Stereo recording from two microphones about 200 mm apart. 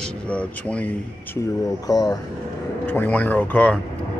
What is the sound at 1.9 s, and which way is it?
Speech, 20° left (ahead or behind).